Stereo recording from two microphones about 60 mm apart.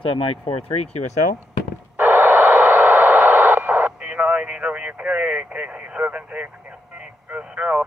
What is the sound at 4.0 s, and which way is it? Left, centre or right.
Radio, centre.